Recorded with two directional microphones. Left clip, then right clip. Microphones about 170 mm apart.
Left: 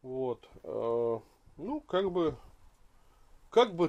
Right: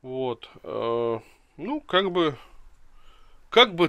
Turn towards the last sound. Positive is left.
turn(degrees=-5)  # may be behind; listen again after turning